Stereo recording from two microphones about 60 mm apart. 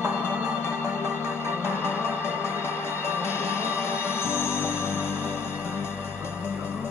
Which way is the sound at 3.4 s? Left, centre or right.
Left.